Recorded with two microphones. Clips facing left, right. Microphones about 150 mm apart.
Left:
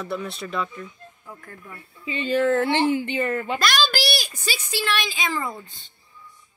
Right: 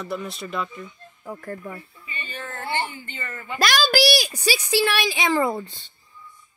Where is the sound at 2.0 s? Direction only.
90° left; by 3.6 s 75° left (ahead or behind).